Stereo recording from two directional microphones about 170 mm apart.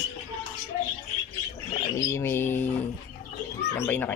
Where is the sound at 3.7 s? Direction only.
10° left (ahead or behind).